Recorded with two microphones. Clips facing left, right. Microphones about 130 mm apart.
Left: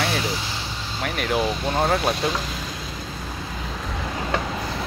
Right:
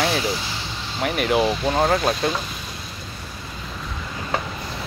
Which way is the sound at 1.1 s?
5° right (ahead or behind).